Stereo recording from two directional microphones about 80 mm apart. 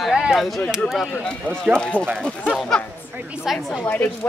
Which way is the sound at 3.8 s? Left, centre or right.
Left.